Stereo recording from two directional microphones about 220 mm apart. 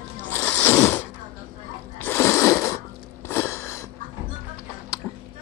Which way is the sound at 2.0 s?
10° left (ahead or behind).